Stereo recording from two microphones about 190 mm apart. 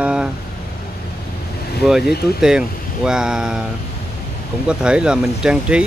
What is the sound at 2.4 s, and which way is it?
Speech, 5° right (ahead or behind).